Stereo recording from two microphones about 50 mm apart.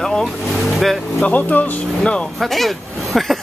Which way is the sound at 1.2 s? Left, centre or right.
Left.